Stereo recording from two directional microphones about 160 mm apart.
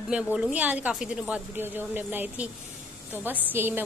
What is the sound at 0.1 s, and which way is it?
A woman's voice, 10° right (ahead or behind).